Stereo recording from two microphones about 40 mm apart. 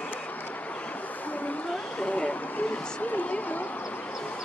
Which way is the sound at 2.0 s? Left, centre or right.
Left.